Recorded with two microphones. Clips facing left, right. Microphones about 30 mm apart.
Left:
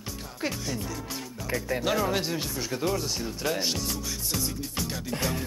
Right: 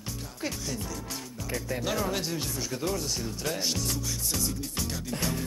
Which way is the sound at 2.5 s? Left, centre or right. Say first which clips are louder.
Left 4 dB; centre.